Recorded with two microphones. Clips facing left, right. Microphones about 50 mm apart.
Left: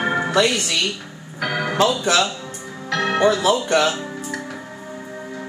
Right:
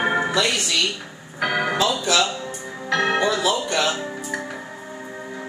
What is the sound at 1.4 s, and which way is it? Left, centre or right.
Speech, centre.